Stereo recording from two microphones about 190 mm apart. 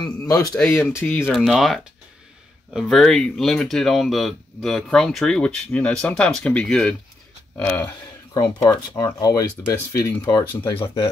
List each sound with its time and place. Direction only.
0.0 s speech: 20° left (ahead or behind)
10.7 s speech: 25° left (ahead or behind)